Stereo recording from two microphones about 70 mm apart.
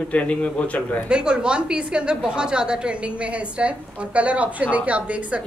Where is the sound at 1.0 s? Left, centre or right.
Centre.